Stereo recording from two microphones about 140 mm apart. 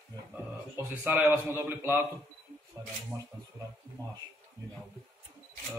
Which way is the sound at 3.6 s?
30° right (ahead or behind).